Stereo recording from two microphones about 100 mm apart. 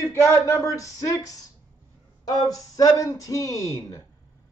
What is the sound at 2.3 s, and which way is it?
Speech, 40° left (ahead or behind).